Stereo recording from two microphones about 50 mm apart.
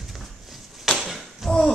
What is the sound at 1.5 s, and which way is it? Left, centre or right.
Pig, centre.